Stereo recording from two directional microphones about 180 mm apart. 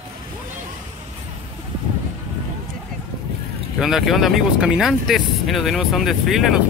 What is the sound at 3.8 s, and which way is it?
Speech, centre (ahead or behind).